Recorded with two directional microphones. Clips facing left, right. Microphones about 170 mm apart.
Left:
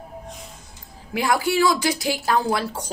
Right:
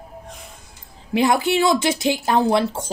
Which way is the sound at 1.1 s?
20° right (ahead or behind).